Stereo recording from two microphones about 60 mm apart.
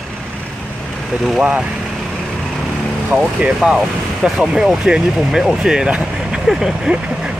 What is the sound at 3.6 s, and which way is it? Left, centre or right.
Speech, centre.